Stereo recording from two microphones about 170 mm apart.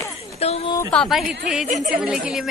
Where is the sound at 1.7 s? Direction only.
45° right (ahead or behind).